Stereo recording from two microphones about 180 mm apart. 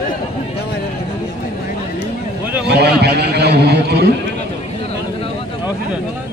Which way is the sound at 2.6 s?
65° right (ahead or behind).